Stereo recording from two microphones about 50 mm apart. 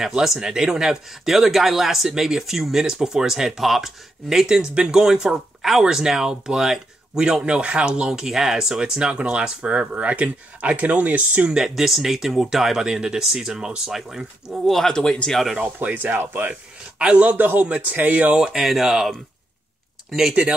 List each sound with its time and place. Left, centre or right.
0.0 s speech: centre
7.4 s speech: right
11.5 s speech: centre
14.9 s speech: centre
15.3 s speech: centre
15.8 s a man's voice: right
16.2 s speech: right
17.0 s a man's voice: right
18.3 s speech: centre